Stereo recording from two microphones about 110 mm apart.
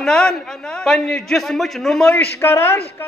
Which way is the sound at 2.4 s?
25° left (ahead or behind).